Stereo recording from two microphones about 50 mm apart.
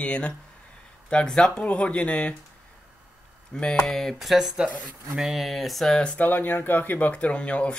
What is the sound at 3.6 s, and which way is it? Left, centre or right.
Speech, centre.